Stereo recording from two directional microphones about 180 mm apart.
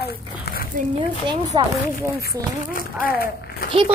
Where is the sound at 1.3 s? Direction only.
25° right (ahead or behind).